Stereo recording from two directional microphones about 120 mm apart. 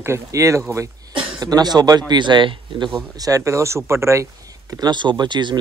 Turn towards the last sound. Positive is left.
turn(degrees=-40)  # may be behind; listen again after turning